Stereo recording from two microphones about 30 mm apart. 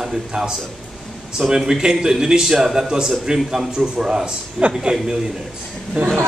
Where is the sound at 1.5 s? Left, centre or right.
Right.